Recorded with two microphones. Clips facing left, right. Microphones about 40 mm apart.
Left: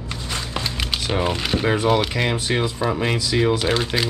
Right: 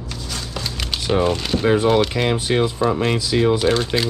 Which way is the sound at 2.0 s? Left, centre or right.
Centre.